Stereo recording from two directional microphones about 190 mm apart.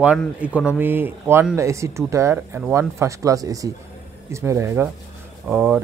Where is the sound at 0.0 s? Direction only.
5° right (ahead or behind).